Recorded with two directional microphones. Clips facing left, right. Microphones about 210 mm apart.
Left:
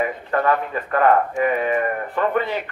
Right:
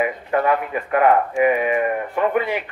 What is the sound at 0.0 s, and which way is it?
Speech, 15° right (ahead or behind).